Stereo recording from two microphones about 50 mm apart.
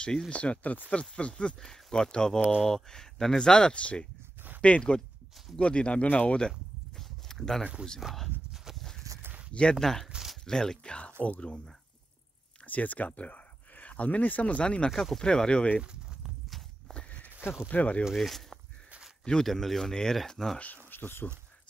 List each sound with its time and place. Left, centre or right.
0.3 s speech: left
1.6 s speech: centre
7.0 s a sound: centre
8.0 s a sound: centre
9.5 s speech: left
9.8 s speech: centre; by 11.6 s left
12.6 s speech: left
14.9 s speech: centre
15.1 s speech: centre
16.2 s walk: centre
16.9 s walk: left
17.6 s speech: left
18.1 s speech: centre
20.5 s speech: left